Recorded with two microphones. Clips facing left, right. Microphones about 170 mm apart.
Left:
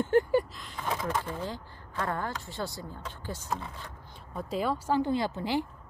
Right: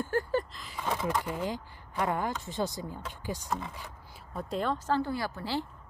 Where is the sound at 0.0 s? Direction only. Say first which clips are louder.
Left 5 dB; 15° left (ahead or behind).